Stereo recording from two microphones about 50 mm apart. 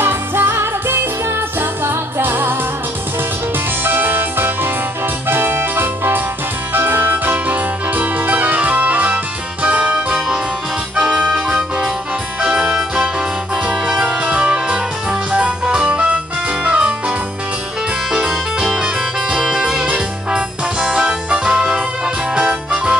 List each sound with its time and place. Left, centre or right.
0.0 s music: right
3.8 s music: right
18.1 s music: centre